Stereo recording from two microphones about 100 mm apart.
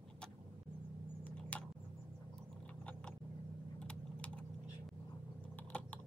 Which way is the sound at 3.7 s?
10° left (ahead or behind).